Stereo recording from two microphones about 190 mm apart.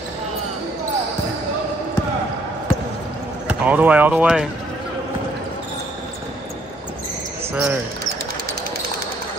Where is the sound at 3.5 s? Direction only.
10° right (ahead or behind).